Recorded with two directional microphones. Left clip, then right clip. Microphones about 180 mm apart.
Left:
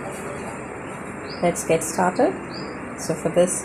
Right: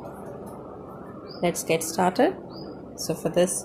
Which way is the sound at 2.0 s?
40° right (ahead or behind).